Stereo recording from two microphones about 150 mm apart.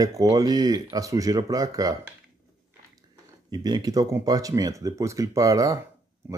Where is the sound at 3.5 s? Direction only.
25° right (ahead or behind).